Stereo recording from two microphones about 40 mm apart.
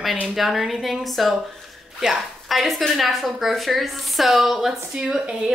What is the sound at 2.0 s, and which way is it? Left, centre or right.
Speech, centre.